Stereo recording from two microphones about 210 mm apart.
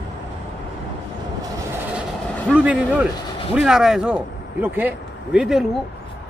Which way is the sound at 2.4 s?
5° right (ahead or behind).